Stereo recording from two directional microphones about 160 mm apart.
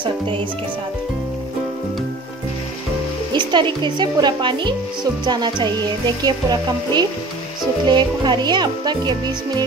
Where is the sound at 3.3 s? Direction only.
30° right (ahead or behind).